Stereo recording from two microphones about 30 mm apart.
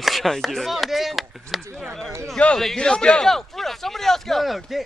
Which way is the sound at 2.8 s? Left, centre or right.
Left.